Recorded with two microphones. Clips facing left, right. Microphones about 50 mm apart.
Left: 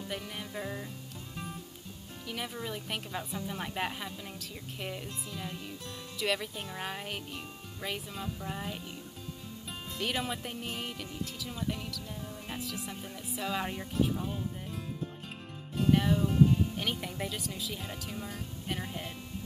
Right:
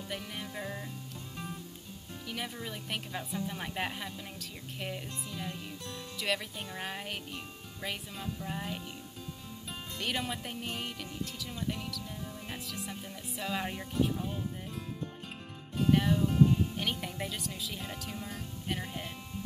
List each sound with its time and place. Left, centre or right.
0.1 s music: centre
2.2 s speech: centre
9.9 s speech: centre